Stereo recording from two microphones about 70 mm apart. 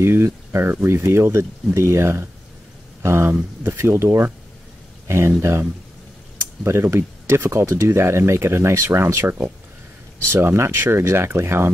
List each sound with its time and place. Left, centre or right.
0.0 s speech: right
10.3 s speech: right